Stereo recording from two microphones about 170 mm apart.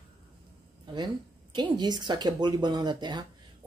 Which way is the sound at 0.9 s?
25° right (ahead or behind).